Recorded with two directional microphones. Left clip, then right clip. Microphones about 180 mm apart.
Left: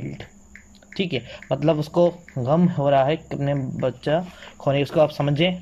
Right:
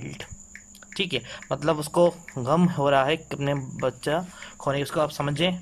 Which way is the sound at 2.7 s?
5° right (ahead or behind).